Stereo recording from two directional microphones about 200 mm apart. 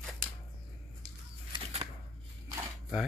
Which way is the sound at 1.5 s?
25° right (ahead or behind).